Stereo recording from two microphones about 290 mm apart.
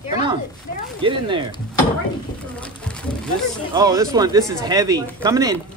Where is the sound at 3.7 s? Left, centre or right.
Centre.